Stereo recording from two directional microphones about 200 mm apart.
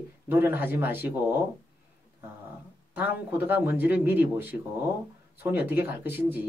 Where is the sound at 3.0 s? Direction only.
10° right (ahead or behind).